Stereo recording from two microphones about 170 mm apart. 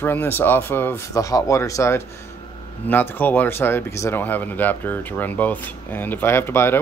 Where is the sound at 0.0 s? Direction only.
10° left (ahead or behind).